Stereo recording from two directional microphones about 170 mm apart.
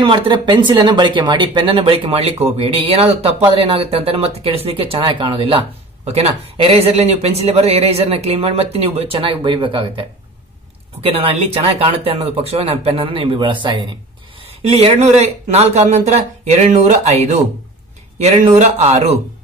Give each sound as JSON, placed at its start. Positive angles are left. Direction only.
{"t": 0.0, "sound": "speech", "side_deg": -30}